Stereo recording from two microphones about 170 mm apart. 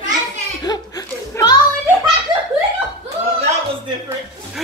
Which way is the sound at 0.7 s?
25° left (ahead or behind).